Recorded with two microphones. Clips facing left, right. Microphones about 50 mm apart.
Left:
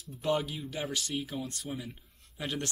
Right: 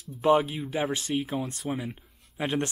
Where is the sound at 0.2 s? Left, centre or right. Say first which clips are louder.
Right 8 dB; right.